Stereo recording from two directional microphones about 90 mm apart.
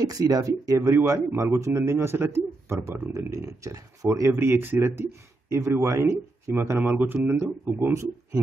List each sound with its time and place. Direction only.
0.0 s a man's voice: 45° right (ahead or behind)
6.8 s speech: 20° right (ahead or behind)
7.6 s a man's voice: 35° right (ahead or behind)